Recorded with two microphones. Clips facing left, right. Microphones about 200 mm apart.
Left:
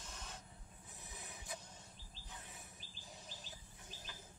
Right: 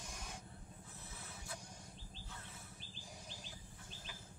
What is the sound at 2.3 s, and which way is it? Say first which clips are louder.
Bird: left 2 dB; 15° left (ahead or behind).